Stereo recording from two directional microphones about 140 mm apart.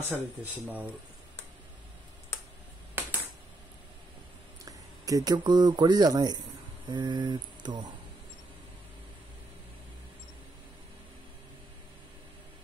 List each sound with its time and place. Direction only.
0.1 s speech: 10° right (ahead or behind)
3.0 s a sound: 15° right (ahead or behind)
4.6 s speech: 25° right (ahead or behind)